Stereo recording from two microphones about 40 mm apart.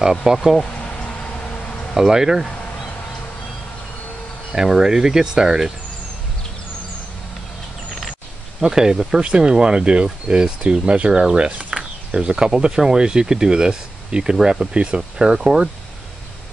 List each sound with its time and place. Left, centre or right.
0.1 s speech: centre
2.0 s speech: centre
4.6 s speech: centre
8.5 s speech: centre